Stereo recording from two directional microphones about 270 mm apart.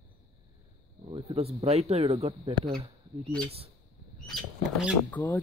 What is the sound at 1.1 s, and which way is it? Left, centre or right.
Speech, right.